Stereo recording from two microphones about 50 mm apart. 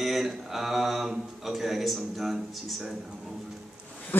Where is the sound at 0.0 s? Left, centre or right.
Centre.